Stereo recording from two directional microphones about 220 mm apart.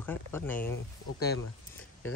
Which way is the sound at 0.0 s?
10° left (ahead or behind).